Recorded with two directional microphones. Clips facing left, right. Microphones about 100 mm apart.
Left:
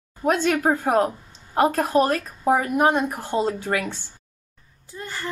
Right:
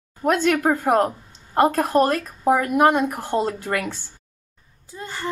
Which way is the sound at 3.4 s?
50° right (ahead or behind).